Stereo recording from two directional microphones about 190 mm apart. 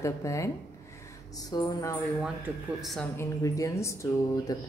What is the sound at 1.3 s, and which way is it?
Music, 20° left (ahead or behind).